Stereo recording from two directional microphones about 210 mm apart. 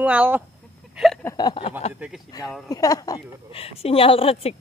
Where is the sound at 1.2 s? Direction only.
20° left (ahead or behind).